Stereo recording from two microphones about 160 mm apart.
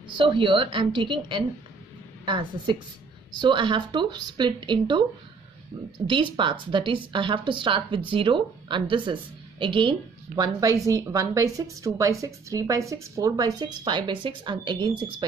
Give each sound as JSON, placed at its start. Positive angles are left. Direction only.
{"t": 0.2, "sound": "a woman's voice", "side_deg": -30}
{"t": 6.0, "sound": "a woman's voice", "side_deg": -30}